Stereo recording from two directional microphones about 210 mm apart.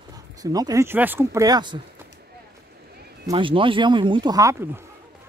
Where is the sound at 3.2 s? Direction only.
25° right (ahead or behind).